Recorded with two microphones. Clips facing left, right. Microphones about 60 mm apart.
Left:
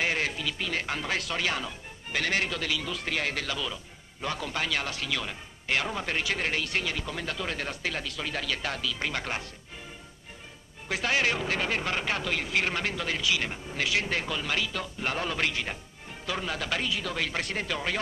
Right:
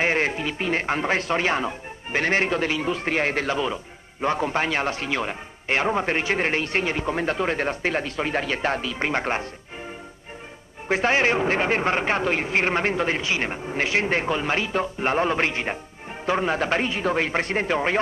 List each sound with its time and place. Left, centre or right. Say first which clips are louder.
0.0 s speech: right 6 dB; right
10.9 s speech: right 7 dB; right